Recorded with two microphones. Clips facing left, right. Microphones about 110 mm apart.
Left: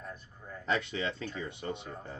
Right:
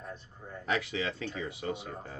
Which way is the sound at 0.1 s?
30° right (ahead or behind).